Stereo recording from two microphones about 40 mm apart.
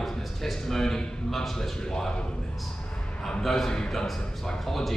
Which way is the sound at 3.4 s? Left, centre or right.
Centre.